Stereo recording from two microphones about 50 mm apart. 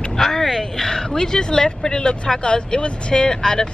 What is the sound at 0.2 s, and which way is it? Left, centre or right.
Speech, centre.